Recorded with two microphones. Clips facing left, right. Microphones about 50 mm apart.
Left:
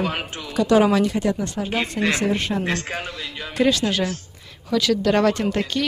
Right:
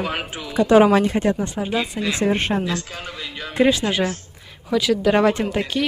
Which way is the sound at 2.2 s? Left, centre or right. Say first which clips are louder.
Right 2 dB; right.